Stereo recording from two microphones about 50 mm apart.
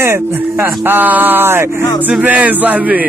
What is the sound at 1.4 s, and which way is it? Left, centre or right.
Speech, right.